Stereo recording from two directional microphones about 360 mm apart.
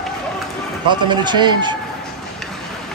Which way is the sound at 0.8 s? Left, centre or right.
Centre.